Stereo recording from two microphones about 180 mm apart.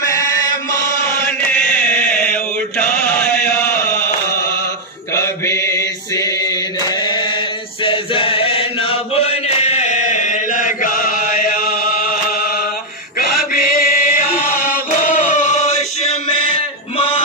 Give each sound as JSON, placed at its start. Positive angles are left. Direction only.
{"t": 0.0, "sound": "chant", "side_deg": 20}
{"t": 1.2, "sound": "chant", "side_deg": 5}
{"t": 5.1, "sound": "mantra", "side_deg": 15}
{"t": 7.8, "sound": "chant", "side_deg": 30}
{"t": 16.4, "sound": "a sound", "side_deg": 30}